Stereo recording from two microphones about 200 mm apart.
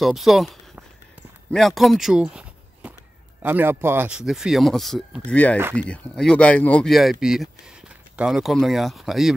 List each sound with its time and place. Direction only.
0.0 s speech: centre (ahead or behind)